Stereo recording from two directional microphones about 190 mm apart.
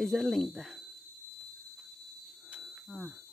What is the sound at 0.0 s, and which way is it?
Speech, centre (ahead or behind).